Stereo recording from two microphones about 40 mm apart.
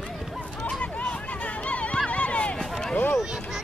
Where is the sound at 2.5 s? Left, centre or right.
Centre.